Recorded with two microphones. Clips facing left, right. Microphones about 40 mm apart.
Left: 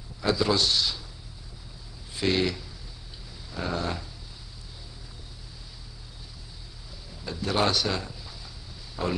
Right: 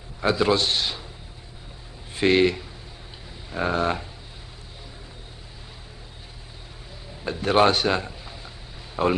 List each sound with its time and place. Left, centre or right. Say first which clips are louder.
0.2 s a man's voice: right 4 dB; right
2.1 s a man's voice: right 7 dB; right
7.2 s a man's voice: right 7 dB; right